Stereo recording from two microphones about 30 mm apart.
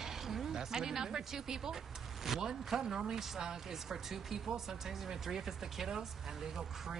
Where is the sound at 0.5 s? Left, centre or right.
Centre.